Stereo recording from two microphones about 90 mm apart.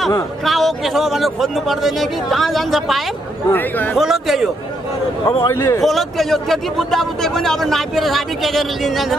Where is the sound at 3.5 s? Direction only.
20° left (ahead or behind).